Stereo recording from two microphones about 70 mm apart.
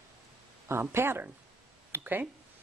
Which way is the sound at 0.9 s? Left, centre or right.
Right.